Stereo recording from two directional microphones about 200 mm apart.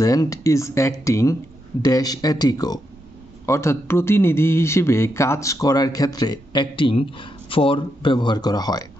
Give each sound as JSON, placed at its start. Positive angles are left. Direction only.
{"t": 0.0, "sound": "speech", "side_deg": 15}